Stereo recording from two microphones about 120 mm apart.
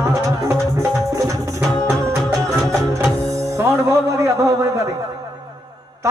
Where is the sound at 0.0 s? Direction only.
25° right (ahead or behind).